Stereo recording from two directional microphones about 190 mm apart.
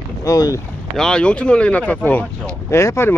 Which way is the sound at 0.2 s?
20° left (ahead or behind).